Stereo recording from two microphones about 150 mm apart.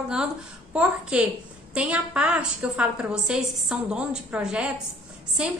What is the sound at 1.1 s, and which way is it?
A woman's voice, 5° right (ahead or behind).